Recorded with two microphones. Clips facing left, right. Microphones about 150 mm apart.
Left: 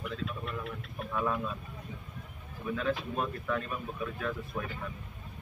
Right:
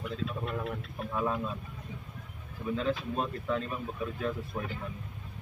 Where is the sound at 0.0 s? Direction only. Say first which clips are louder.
Right 2 dB; 35° right (ahead or behind).